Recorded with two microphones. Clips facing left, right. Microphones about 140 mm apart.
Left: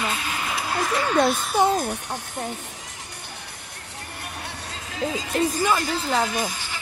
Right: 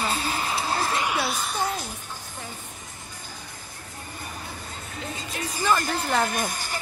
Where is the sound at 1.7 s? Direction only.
60° left (ahead or behind).